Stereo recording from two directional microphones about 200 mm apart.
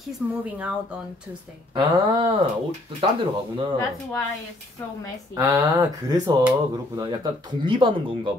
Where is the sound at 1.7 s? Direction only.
25° right (ahead or behind).